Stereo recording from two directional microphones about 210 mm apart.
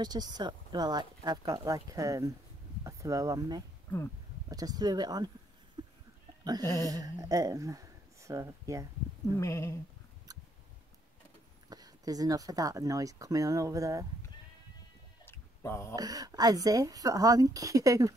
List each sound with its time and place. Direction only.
0.0 s speech: 20° right (ahead or behind)
5.8 s goat: 20° right (ahead or behind)
6.4 s speech: 20° right (ahead or behind)
9.4 s a sound: 15° left (ahead or behind)
11.7 s speech: 15° right (ahead or behind)
15.2 s a sound: 10° left (ahead or behind)
16.0 s speech: 15° right (ahead or behind)